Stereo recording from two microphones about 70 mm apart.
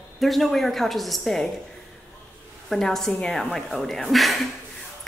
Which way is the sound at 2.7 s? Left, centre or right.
Centre.